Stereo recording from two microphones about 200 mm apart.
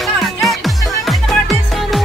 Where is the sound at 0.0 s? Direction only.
Centre (ahead or behind).